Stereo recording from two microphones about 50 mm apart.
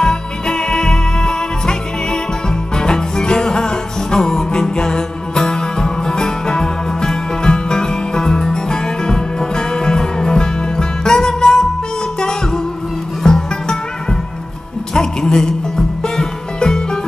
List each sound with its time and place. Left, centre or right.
0.0 s music: centre
13.2 s music: centre
15.0 s a sound: centre
16.0 s music: centre